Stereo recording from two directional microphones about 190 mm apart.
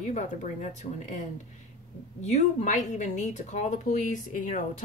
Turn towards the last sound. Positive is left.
turn(degrees=40)  # may be behind; listen again after turning